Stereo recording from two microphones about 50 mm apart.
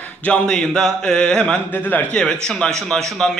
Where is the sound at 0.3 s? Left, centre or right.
Centre.